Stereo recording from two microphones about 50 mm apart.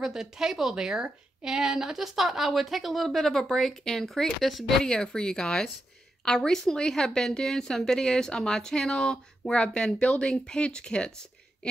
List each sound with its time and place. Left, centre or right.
0.0 s a woman's voice: centre
4.8 s a woman's voice: centre